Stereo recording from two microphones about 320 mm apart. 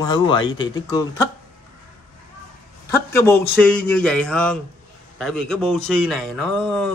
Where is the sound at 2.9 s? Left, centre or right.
Centre.